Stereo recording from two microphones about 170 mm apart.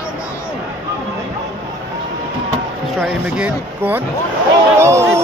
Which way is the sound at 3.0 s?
5° right (ahead or behind).